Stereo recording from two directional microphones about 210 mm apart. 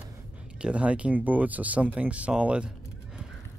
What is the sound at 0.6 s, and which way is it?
Speech, 5° right (ahead or behind).